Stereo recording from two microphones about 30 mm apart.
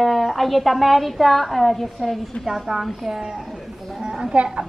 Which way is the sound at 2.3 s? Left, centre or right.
Left.